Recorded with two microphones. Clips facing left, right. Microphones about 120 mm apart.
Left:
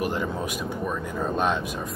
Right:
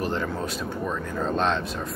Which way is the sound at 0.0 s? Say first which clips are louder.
Even; 15° left (ahead or behind).